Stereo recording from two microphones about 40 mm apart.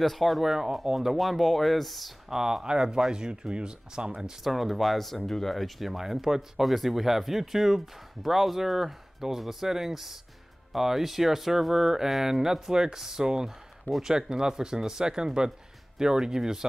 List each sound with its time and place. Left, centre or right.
0.0 s speech: centre
2.2 s speech: centre
4.4 s speech: centre